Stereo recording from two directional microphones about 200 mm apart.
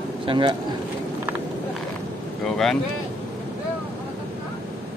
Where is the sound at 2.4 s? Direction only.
Centre (ahead or behind).